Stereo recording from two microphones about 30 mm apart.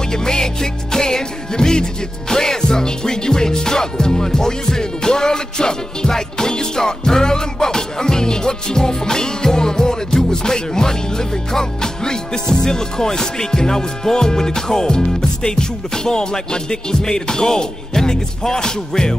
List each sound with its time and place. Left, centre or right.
0.1 s music: left